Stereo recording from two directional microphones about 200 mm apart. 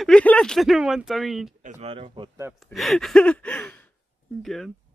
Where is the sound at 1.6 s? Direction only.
35° right (ahead or behind).